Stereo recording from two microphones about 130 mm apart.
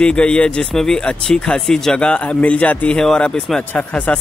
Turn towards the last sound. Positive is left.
turn(degrees=10)  # may be behind; listen again after turning